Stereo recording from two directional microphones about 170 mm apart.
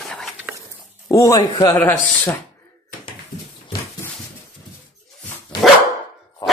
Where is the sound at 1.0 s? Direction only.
20° left (ahead or behind).